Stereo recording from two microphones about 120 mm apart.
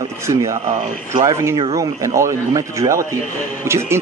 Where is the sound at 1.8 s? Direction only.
25° right (ahead or behind).